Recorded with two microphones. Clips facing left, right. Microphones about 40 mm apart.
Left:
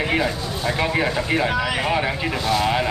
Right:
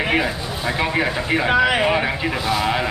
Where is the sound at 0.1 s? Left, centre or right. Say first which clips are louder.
Right 1 dB; centre.